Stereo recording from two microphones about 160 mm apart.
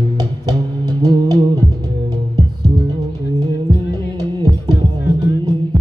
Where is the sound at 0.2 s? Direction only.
25° right (ahead or behind).